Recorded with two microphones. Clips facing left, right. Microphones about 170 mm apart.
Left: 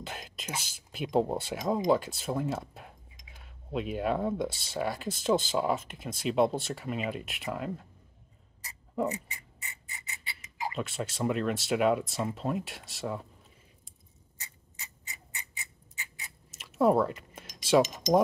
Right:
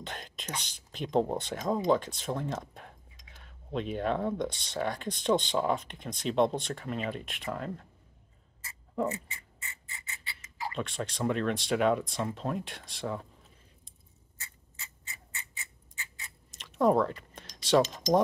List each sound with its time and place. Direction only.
0.0 s speech: 5° left (ahead or behind)
9.0 s a sound: 20° left (ahead or behind)
10.7 s speech: 5° left (ahead or behind)
14.4 s clock: 20° left (ahead or behind)
16.4 s cutlery: 5° left (ahead or behind)